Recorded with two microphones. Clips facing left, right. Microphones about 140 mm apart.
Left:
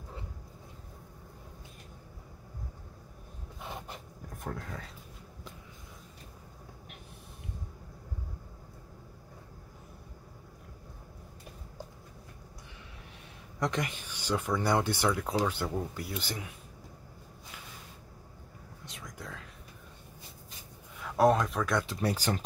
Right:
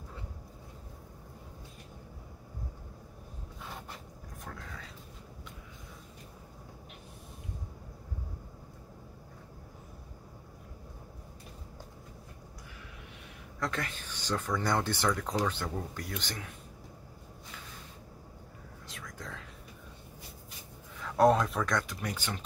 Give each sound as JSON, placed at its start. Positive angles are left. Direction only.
{"t": 4.4, "sound": "a sound", "side_deg": 45}
{"t": 13.6, "sound": "speech", "side_deg": 15}
{"t": 18.9, "sound": "whispering", "side_deg": 25}
{"t": 19.1, "sound": "whispering", "side_deg": 5}
{"t": 21.0, "sound": "speech", "side_deg": 0}
{"t": 21.8, "sound": "speech", "side_deg": 35}